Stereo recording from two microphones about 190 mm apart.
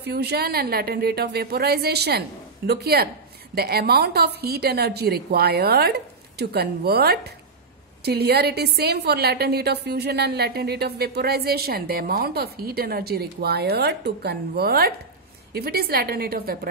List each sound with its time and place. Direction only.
0.0 s a woman's voice: 60° right (ahead or behind)